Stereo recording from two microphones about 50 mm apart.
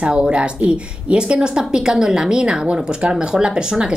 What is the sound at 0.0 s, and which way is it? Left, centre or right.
A woman's voice, centre.